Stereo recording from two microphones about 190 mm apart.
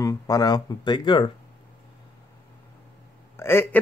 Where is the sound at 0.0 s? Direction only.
15° left (ahead or behind).